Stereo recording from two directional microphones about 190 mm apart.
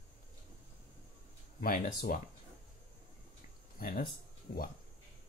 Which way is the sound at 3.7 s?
50° left (ahead or behind).